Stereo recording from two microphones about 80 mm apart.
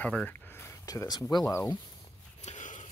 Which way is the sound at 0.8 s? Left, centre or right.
Left.